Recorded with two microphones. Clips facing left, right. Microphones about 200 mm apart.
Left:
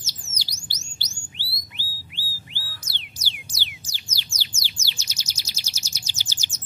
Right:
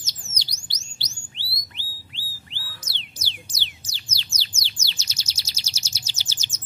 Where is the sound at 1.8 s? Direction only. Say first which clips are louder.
Left 2 dB; 10° left (ahead or behind).